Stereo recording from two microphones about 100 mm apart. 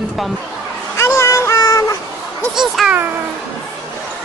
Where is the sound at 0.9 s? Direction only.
30° left (ahead or behind).